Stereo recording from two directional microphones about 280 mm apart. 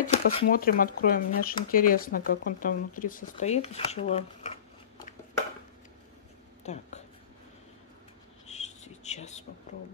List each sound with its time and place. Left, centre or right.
0.0 s speech: left
6.6 s speech: left
8.5 s a sound: left